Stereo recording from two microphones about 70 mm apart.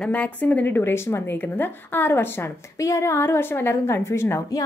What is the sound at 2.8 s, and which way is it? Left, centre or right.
A woman's voice, left.